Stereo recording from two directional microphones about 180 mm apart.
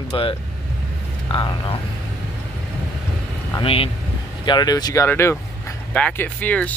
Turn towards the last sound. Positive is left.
turn(degrees=10)  # may be behind; listen again after turning